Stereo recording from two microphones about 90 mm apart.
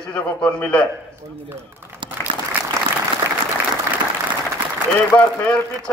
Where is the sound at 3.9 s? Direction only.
35° right (ahead or behind).